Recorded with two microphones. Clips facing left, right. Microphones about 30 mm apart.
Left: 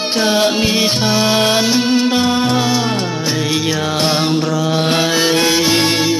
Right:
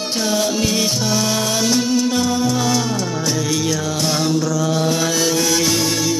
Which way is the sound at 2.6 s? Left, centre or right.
Left.